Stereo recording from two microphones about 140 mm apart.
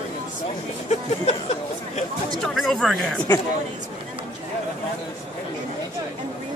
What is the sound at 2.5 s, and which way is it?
Speech, centre (ahead or behind).